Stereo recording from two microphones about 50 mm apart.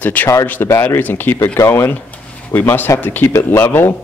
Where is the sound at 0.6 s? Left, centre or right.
Left.